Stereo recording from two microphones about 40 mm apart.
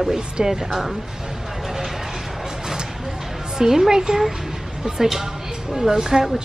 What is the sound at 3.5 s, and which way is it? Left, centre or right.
A woman's voice, centre.